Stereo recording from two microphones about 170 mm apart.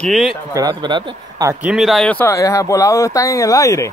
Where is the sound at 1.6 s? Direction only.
5° right (ahead or behind); by 3.8 s 20° left (ahead or behind).